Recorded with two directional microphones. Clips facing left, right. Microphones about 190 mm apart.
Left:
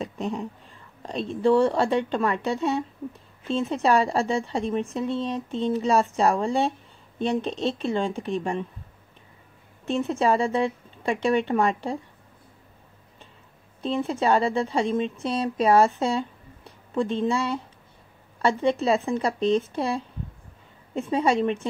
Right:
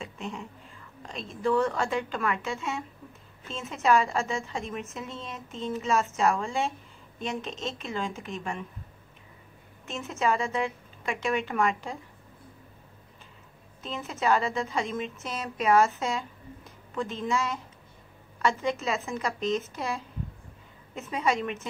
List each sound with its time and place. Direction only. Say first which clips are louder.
0.0 s a sound: left 8 dB; 40° left (ahead or behind)
1.0 s a woman's voice: left 7 dB; 35° left (ahead or behind)
9.8 s a woman's voice: left 6 dB; 35° left (ahead or behind)
13.8 s a woman's voice: left 5 dB; 30° left (ahead or behind)